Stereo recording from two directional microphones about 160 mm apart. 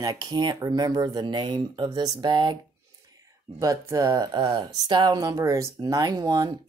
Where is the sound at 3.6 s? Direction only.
20° right (ahead or behind).